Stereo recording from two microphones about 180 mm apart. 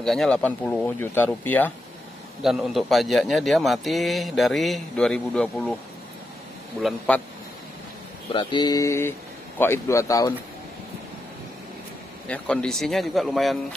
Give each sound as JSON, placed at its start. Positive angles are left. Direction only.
{"t": 0.0, "sound": "speech", "side_deg": 0}
{"t": 2.4, "sound": "a man's voice", "side_deg": 0}
{"t": 6.8, "sound": "a man's voice", "side_deg": 0}
{"t": 8.3, "sound": "speech", "side_deg": 25}
{"t": 12.3, "sound": "a man's voice", "side_deg": 5}